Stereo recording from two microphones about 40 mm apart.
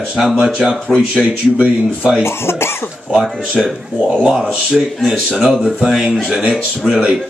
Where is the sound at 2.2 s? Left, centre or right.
Left.